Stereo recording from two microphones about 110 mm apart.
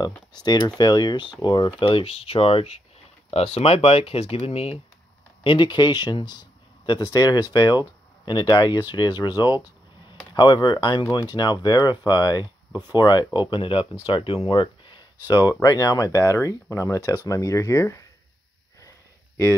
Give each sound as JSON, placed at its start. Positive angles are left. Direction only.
{"t": 0.4, "sound": "speech", "side_deg": 40}
{"t": 5.4, "sound": "speech", "side_deg": 50}